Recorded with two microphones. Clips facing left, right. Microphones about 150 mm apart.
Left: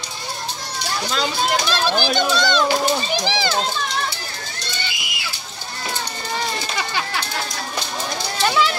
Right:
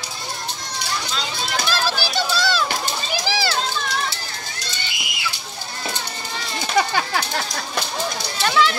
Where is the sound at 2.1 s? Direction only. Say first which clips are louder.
Left 3 dB; 5° right (ahead or behind).